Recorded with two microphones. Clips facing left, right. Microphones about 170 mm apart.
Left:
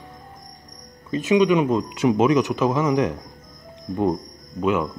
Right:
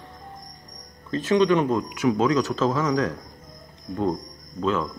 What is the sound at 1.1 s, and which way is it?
Speech, 15° left (ahead or behind).